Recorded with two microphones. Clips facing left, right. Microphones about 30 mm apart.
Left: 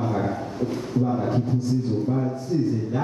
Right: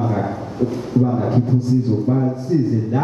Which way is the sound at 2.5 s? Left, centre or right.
Centre.